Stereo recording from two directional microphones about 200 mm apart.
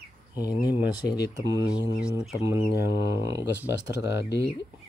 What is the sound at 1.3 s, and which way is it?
Speech, 20° right (ahead or behind).